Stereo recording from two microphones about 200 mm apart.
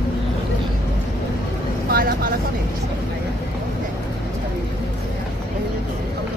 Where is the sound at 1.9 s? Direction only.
50° right (ahead or behind).